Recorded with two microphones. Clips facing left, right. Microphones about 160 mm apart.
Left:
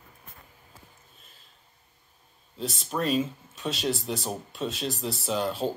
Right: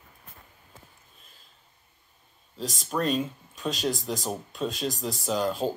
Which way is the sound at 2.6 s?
40° right (ahead or behind).